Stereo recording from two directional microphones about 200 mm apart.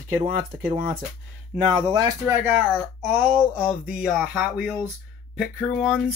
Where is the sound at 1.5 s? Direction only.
30° right (ahead or behind).